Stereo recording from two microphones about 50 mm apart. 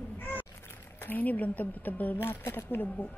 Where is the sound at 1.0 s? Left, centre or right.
Left.